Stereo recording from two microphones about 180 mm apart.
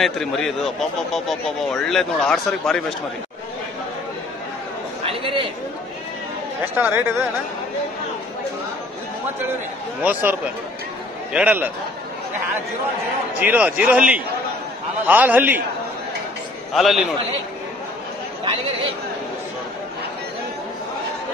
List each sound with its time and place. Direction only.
0.0 s a man's voice: centre (ahead or behind)
5.0 s a sound: 30° right (ahead or behind)
6.6 s a man's voice: 10° right (ahead or behind)
11.3 s a man's voice: 10° right (ahead or behind)
13.4 s a man's voice: 10° right (ahead or behind)
16.7 s a man's voice: centre (ahead or behind)